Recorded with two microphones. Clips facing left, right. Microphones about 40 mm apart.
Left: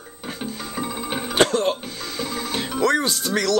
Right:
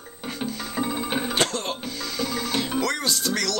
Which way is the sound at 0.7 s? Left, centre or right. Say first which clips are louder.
Right 2 dB; centre.